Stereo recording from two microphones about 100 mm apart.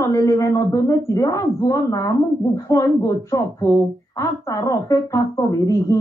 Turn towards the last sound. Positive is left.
turn(degrees=35)  # may be behind; listen again after turning